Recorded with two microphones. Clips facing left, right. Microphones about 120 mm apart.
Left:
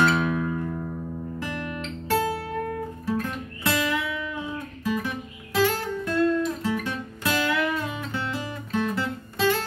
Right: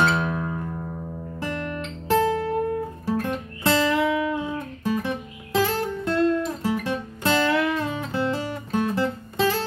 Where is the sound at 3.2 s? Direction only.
25° right (ahead or behind).